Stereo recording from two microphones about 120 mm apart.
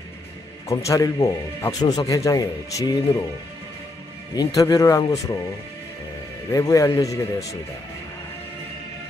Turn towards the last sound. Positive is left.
turn(degrees=25)  # may be behind; listen again after turning